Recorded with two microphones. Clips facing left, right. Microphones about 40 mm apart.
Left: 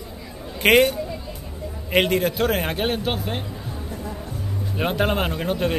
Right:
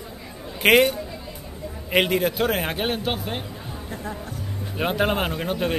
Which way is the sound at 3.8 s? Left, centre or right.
Right.